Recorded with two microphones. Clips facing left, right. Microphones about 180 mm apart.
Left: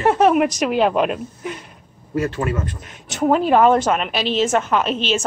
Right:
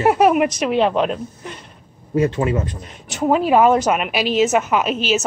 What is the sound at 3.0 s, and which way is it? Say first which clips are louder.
A woman's voice: even; centre (ahead or behind).